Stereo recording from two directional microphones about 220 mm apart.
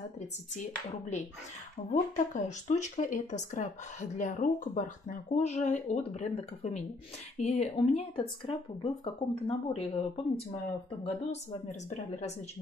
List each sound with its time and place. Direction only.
1.1 s speech: 30° left (ahead or behind)